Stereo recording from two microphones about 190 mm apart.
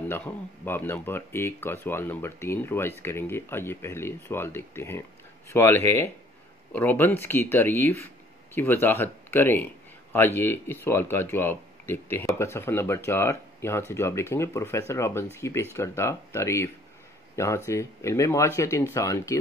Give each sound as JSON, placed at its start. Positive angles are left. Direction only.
{"t": 0.1, "sound": "speech", "side_deg": 10}